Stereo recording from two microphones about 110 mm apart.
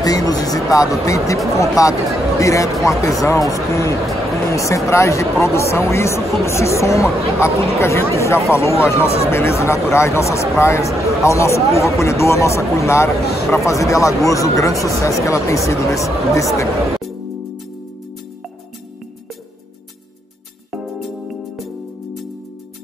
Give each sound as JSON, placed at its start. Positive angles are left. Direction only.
{"t": 0.0, "sound": "speech", "side_deg": 35}
{"t": 20.7, "sound": "music", "side_deg": 0}